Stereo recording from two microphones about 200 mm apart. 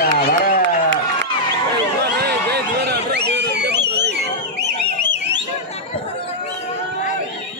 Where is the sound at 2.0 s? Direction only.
55° right (ahead or behind).